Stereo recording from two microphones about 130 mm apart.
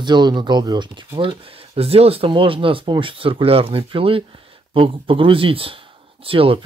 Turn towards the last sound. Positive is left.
turn(degrees=-45)  # may be behind; listen again after turning